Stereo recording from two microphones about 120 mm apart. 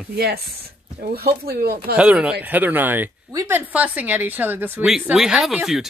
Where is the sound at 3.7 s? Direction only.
15° right (ahead or behind).